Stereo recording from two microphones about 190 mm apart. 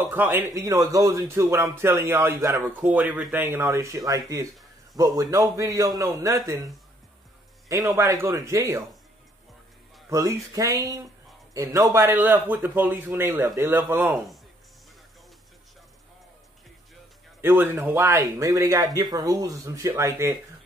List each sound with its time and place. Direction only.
0.0 s a man's voice: 10° right (ahead or behind)
10.0 s a man's voice: 20° right (ahead or behind)
14.1 s speech: centre (ahead or behind)
17.4 s a man's voice: 10° right (ahead or behind)